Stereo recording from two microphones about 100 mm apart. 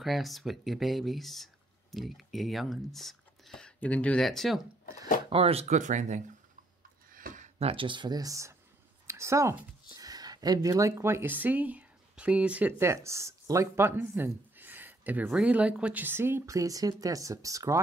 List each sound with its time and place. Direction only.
0.0 s speech: centre (ahead or behind)
5.3 s speech: 80° right
7.5 s speech: 70° right (ahead or behind); by 9.6 s 30° right (ahead or behind)
9.9 s speech: 40° right (ahead or behind); by 14.3 s 25° right (ahead or behind)
14.6 s a sound: 20° right (ahead or behind)
15.7 s speech: 15° right (ahead or behind); by 17.7 s 35° right (ahead or behind)